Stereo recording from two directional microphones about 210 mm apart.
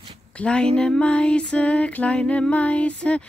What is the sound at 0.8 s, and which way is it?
Music, 5° left (ahead or behind).